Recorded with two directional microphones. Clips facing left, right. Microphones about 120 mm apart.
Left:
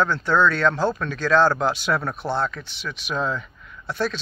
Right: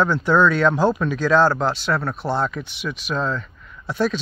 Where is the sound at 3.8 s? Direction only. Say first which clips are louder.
Right 4 dB; 5° right (ahead or behind).